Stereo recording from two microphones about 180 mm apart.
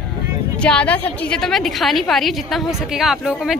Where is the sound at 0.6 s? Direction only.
5° left (ahead or behind).